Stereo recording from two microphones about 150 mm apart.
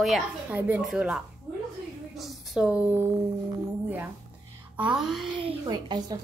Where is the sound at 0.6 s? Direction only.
10° right (ahead or behind).